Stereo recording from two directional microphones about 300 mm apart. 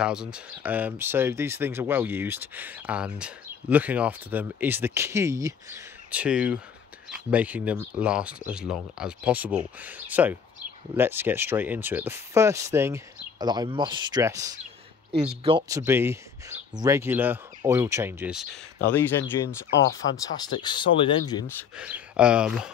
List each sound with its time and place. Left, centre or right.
0.0 s speech: centre
19.7 s speech: left
20.6 s speech: centre
21.7 s speech: centre